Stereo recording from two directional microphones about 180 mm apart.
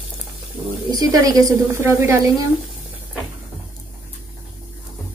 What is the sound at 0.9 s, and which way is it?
A woman's voice, 20° right (ahead or behind).